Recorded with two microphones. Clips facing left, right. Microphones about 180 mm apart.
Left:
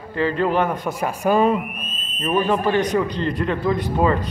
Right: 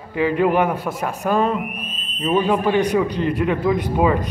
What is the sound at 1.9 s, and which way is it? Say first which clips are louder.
Speech: right 2 dB; 10° right (ahead or behind).